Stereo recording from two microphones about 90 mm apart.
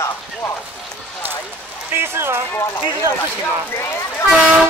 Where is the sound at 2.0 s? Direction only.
25° right (ahead or behind).